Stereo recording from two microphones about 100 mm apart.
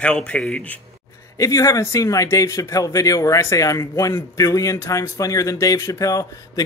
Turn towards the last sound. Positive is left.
turn(degrees=35)  # may be behind; listen again after turning